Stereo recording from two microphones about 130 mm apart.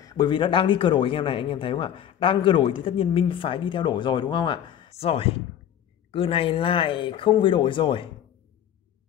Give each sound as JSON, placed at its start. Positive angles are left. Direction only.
{"t": 0.0, "sound": "speech", "side_deg": 30}